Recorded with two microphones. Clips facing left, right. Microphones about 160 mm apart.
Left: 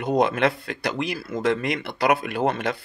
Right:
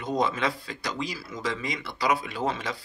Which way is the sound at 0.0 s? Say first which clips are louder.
Left 6 dB; 65° left (ahead or behind).